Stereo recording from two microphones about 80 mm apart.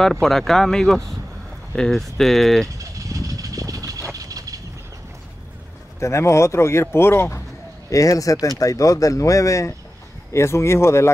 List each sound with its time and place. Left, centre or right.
0.0 s speech: centre
2.8 s a sound: right
5.9 s speech: left
7.9 s speech: left